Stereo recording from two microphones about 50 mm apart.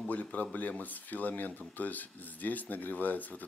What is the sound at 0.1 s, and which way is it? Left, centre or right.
Speech, left.